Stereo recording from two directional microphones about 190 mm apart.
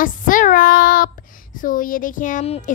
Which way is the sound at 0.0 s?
45° left (ahead or behind).